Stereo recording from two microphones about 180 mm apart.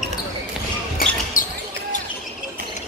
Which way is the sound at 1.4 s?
50° left (ahead or behind).